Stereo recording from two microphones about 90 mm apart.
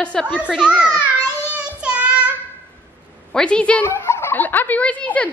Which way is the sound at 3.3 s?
10° left (ahead or behind).